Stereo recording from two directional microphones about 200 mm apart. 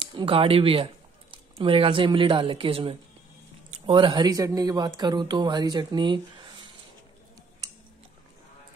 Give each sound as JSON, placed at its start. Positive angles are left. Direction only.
{"t": 0.0, "sound": "speech", "side_deg": -25}